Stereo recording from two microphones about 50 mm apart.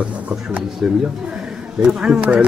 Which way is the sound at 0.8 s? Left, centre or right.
Right.